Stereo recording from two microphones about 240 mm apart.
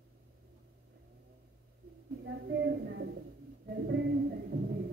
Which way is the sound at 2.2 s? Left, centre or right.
Right.